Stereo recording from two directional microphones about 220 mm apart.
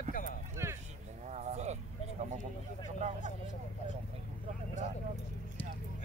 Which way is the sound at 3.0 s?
30° right (ahead or behind).